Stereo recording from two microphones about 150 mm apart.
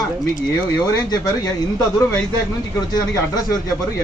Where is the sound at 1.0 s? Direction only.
25° left (ahead or behind).